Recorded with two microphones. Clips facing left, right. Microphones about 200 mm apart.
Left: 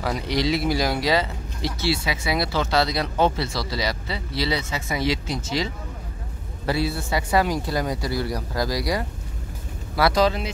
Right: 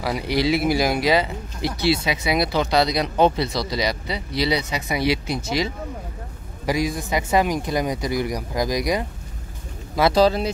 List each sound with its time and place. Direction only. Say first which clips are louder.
0.0 s speech: right 2 dB; 10° right (ahead or behind)
6.6 s speech: right 2 dB; 15° right (ahead or behind)
10.2 s speech: right 4 dB; 35° right (ahead or behind)